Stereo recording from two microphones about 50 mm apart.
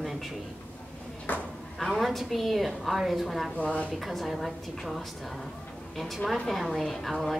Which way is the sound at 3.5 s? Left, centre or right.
Left.